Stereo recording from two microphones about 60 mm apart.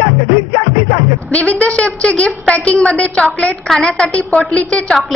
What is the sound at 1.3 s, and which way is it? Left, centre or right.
A woman's voice, left.